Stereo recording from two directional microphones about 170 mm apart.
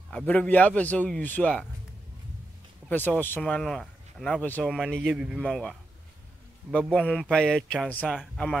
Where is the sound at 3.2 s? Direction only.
10° left (ahead or behind).